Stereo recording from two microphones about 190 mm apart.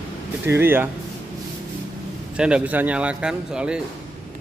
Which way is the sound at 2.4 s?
5° right (ahead or behind).